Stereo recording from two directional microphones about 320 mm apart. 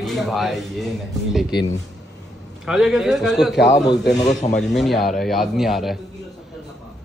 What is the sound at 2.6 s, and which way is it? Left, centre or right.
Speech, centre.